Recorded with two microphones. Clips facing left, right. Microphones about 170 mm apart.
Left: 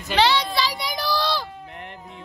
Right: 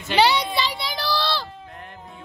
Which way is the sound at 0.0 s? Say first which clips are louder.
Right 1 dB; 5° right (ahead or behind).